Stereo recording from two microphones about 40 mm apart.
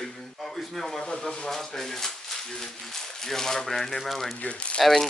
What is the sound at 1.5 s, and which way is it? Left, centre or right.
A man's voice, centre.